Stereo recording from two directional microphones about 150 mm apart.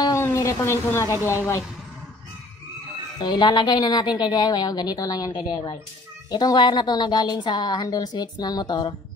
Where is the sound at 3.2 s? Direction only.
30° left (ahead or behind).